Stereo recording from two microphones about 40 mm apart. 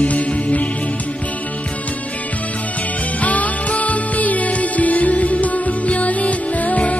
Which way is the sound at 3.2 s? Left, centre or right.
Left.